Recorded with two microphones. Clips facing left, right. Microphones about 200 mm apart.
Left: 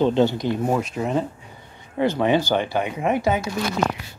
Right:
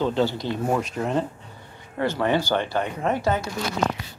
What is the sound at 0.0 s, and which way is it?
Speech, 20° left (ahead or behind).